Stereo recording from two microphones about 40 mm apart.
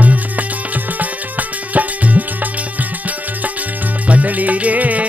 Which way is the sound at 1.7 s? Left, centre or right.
Right.